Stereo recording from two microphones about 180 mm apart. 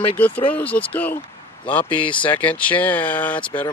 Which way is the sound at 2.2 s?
5° left (ahead or behind).